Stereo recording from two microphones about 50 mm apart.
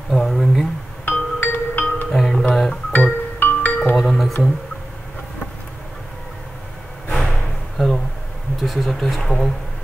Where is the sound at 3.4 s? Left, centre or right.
Left.